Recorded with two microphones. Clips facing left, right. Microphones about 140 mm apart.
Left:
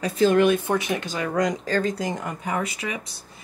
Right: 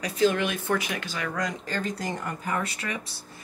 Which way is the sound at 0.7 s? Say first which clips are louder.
Left 4 dB; 25° left (ahead or behind).